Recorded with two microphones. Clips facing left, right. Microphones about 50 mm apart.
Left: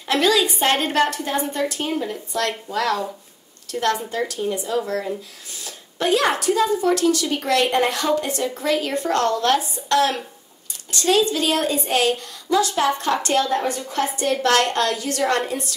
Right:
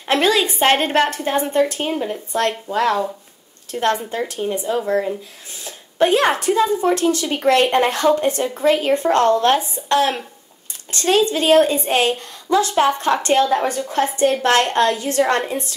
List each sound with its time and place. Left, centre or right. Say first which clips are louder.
0.0 s a woman's voice: right 2 dB; right
13.6 s a woman's voice: right 3 dB; right
13.8 s a woman's voice: right 5 dB; right